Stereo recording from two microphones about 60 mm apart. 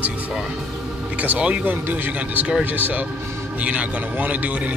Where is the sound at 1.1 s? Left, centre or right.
Right.